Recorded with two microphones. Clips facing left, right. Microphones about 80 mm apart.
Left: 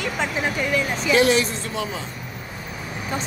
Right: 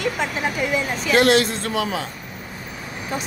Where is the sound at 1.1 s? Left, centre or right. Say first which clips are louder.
Right 3 dB; right.